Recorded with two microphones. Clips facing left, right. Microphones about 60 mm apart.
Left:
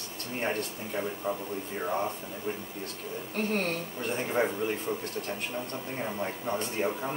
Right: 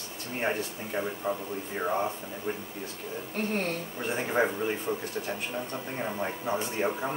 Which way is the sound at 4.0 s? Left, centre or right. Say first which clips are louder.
Right 2 dB; centre.